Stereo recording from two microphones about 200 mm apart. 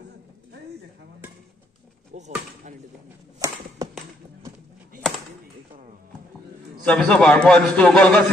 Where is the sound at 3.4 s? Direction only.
15° right (ahead or behind).